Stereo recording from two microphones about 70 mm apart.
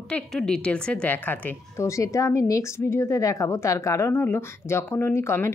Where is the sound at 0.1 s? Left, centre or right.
Centre.